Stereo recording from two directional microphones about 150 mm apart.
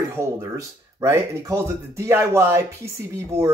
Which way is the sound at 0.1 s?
20° right (ahead or behind).